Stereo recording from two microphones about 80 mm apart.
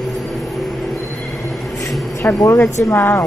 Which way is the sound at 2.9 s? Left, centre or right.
Left.